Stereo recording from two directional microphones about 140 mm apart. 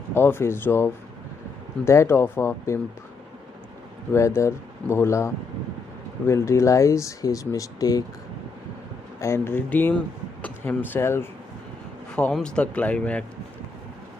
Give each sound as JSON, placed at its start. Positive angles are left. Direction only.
{"t": 0.1, "sound": "speech", "side_deg": 15}
{"t": 4.1, "sound": "speech", "side_deg": 20}
{"t": 9.2, "sound": "speech", "side_deg": 20}
{"t": 12.2, "sound": "speech", "side_deg": 5}